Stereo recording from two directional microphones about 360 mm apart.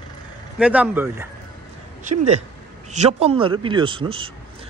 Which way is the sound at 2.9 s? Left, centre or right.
Centre.